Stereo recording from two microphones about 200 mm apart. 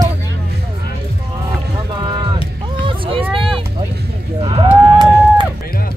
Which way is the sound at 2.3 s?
25° right (ahead or behind).